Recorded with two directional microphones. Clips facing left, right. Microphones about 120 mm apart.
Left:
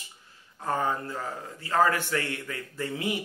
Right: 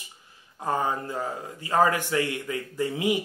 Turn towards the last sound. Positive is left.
turn(degrees=-15)  # may be behind; listen again after turning